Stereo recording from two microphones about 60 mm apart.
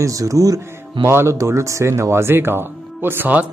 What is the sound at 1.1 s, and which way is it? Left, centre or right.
Speech, right.